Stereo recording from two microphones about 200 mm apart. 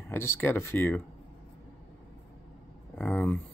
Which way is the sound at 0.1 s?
10° left (ahead or behind).